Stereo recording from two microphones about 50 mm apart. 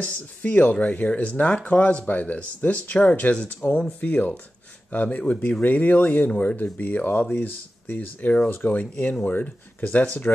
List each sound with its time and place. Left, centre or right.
0.0 s speech: left